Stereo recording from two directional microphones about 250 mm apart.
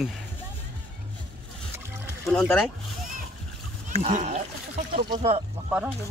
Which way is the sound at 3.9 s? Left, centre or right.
Right.